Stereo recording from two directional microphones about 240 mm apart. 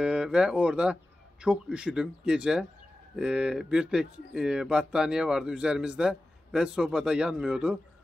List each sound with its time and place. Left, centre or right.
0.0 s speech: centre